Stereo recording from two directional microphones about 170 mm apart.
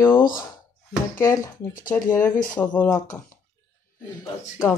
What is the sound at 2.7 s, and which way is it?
Speech, 10° left (ahead or behind).